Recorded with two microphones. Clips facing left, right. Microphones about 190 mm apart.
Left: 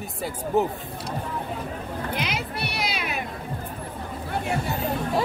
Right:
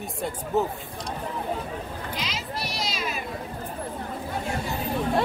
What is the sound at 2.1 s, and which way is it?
Music, 60° left (ahead or behind).